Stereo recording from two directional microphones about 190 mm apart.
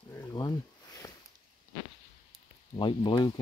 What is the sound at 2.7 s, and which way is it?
Speech, 25° left (ahead or behind).